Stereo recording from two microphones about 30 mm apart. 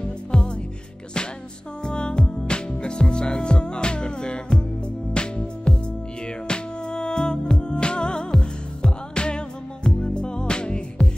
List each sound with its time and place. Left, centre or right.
0.3 s music: left
1.9 s music: left